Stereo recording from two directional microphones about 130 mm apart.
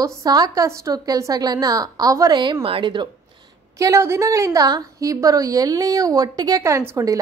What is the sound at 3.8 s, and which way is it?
A woman's voice, 20° right (ahead or behind).